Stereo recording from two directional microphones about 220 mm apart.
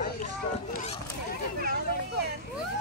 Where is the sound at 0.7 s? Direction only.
30° left (ahead or behind).